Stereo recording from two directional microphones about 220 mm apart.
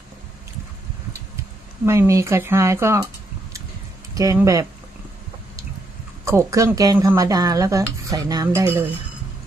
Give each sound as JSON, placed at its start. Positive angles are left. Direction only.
{"t": 1.9, "sound": "speech", "side_deg": -15}
{"t": 4.1, "sound": "speech", "side_deg": -15}
{"t": 6.2, "sound": "speech", "side_deg": -15}